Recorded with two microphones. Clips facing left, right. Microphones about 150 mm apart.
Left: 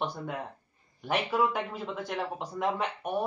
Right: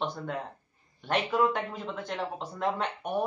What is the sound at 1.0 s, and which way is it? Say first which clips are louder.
A man's voice: right 1 dB; 10° left (ahead or behind).